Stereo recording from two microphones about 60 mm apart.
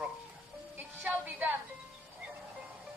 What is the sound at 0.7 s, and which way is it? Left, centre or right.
Music, right.